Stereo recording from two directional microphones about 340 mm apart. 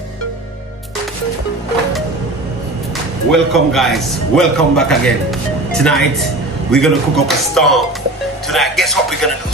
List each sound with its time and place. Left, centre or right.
3.3 s speech: centre